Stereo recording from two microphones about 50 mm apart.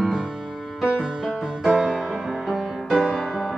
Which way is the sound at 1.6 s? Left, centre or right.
Centre.